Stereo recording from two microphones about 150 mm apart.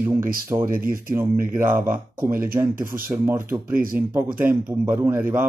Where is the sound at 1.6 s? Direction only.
15° right (ahead or behind).